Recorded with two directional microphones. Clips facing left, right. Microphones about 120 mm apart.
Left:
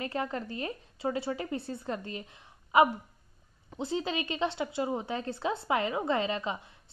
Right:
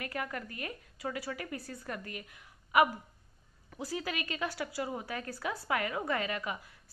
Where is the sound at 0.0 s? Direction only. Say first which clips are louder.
Left 5 dB; 25° left (ahead or behind).